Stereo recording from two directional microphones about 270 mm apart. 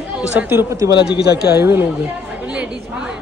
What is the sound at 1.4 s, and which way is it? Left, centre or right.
Speech, centre.